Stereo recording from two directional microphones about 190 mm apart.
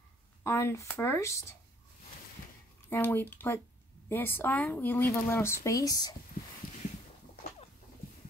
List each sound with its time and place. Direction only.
0.4 s speech: 15° left (ahead or behind)
2.9 s speech: 10° left (ahead or behind)
6.6 s a sound: 50° left (ahead or behind)